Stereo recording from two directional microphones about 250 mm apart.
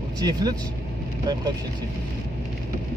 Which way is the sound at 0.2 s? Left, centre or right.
Centre.